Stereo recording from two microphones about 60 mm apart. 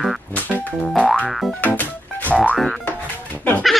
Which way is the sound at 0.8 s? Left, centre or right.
Centre.